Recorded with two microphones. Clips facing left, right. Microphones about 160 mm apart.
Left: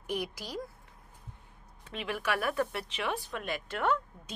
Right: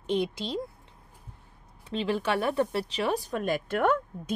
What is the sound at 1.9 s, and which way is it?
Speech, 30° right (ahead or behind).